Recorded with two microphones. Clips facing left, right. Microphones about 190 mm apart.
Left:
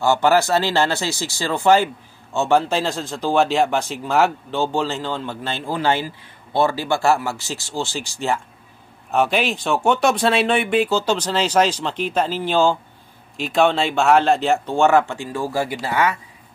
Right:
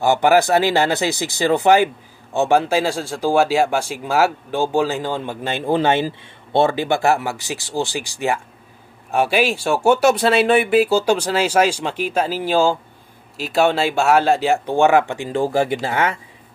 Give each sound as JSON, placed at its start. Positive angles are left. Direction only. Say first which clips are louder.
{"t": 0.0, "sound": "speech", "louder": "right 2 dB", "side_deg": -15}